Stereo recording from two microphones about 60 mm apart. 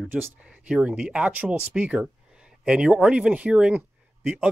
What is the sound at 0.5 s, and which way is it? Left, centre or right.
Speech, centre.